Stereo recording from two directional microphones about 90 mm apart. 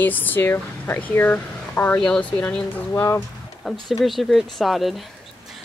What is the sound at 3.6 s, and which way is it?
Speech, centre (ahead or behind).